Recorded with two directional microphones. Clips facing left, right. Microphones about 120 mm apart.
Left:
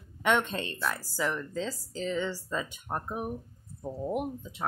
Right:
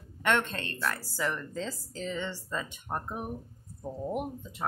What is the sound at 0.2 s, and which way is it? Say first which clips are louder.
Speech: left 1 dB; 10° left (ahead or behind).